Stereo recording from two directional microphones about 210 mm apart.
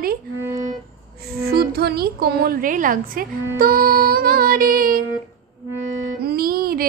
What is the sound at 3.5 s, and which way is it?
Music, 45° right (ahead or behind).